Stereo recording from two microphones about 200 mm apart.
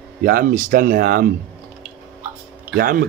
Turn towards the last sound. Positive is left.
turn(degrees=-45)  # may be behind; listen again after turning